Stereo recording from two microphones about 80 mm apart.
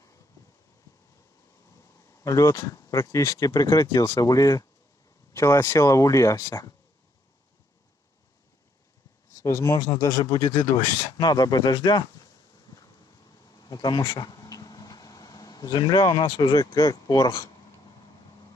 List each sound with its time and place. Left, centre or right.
2.2 s speech: left
5.6 s speech: left
9.4 s speech: left
10.8 s speech: left
13.5 s speech: left